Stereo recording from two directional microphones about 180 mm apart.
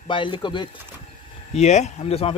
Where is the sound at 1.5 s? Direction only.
40° left (ahead or behind).